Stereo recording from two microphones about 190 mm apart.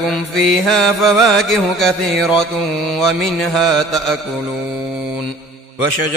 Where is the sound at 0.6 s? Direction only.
Centre (ahead or behind).